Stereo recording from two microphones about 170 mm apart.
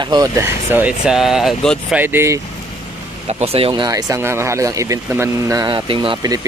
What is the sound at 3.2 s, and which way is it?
Speech, 40° right (ahead or behind).